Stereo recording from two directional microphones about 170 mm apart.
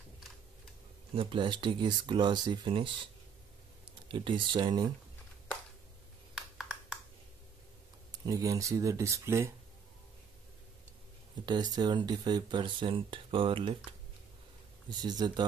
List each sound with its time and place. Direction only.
1.1 s speech: 30° right (ahead or behind)
4.1 s speech: 30° right (ahead or behind)
6.3 s a sound: 5° right (ahead or behind)
8.1 s speech: 20° right (ahead or behind)
11.4 s speech: 25° right (ahead or behind)
14.9 s speech: 25° right (ahead or behind)